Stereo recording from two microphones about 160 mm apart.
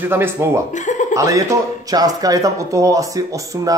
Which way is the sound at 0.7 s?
50° left (ahead or behind).